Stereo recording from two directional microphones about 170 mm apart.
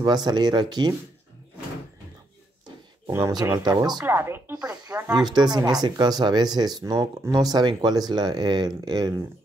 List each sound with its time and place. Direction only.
0.0 s speech: 25° right (ahead or behind)
3.1 s speech: 15° right (ahead or behind)
4.0 s speech: 15° right (ahead or behind)